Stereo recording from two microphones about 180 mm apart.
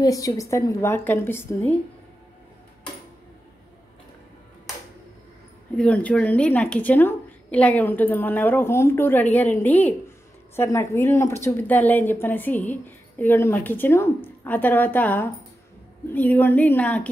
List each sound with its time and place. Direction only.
0.0 s a woman's voice: 20° left (ahead or behind)
5.8 s a woman's voice: 5° left (ahead or behind)